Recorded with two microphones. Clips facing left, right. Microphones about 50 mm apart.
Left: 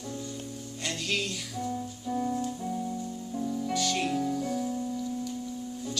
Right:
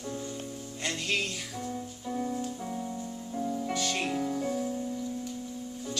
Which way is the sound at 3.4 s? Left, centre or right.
Centre.